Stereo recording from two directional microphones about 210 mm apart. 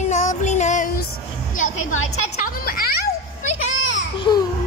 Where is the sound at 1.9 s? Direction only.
80° left.